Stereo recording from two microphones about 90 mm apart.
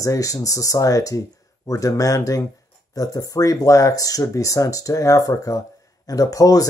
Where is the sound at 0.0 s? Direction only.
40° left (ahead or behind).